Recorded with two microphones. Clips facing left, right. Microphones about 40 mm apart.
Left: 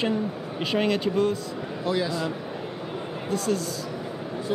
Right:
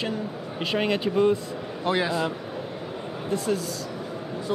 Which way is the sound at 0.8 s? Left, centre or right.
Centre.